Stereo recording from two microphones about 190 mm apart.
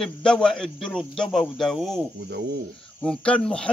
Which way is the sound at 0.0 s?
5° left (ahead or behind).